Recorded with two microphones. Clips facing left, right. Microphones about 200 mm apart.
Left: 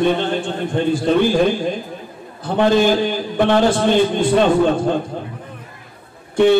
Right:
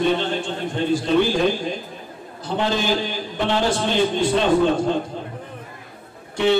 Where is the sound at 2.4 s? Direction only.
55° left (ahead or behind).